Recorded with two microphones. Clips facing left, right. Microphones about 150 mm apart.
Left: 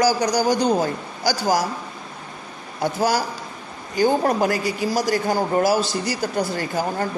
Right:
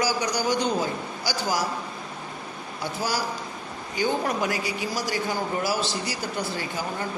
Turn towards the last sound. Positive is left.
turn(degrees=45)  # may be behind; listen again after turning